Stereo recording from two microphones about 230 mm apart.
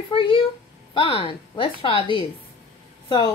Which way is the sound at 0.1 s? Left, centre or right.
Left.